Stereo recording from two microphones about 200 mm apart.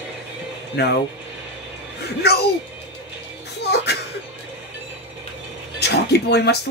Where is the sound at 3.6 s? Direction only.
55° left (ahead or behind).